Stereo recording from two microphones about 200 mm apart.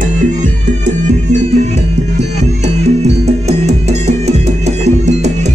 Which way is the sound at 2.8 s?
35° right (ahead or behind).